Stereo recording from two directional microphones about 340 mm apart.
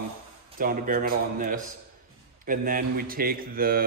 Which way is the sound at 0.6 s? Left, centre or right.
Right.